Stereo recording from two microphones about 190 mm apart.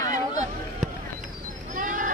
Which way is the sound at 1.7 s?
45° right (ahead or behind).